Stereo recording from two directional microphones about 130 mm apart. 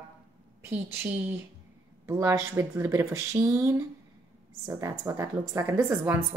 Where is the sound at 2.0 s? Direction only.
20° right (ahead or behind).